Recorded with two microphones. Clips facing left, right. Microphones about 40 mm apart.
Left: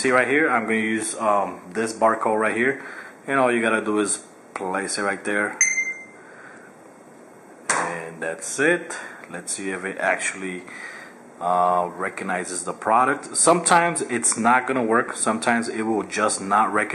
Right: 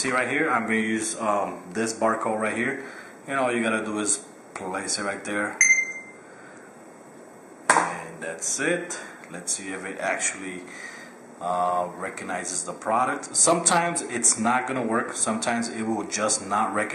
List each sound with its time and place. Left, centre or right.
0.0 s speech: centre
7.7 s clapping: centre
8.4 s speech: centre
9.6 s speech: centre